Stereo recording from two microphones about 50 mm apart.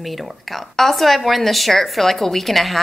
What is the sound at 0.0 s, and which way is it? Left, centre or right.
Speech, centre.